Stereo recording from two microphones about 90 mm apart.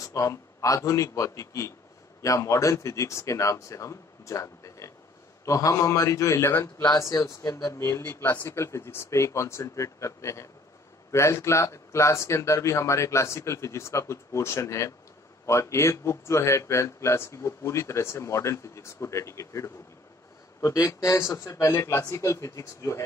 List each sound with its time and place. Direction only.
0.0 s a man's voice: 35° left (ahead or behind)
8.1 s a man's voice: 25° left (ahead or behind)